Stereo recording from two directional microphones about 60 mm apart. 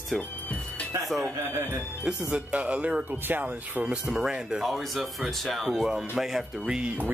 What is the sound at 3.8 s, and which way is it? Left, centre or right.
Speech, centre.